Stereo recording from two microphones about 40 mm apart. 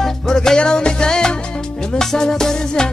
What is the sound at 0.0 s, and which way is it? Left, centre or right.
Music, centre.